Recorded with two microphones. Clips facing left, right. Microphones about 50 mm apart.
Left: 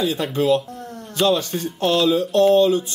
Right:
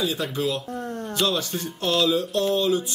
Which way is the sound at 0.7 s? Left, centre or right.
Right.